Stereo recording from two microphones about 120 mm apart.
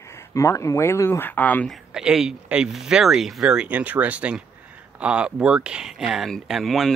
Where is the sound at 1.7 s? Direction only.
5° right (ahead or behind).